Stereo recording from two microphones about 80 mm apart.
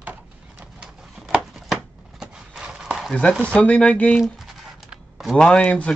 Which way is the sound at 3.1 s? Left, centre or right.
Centre.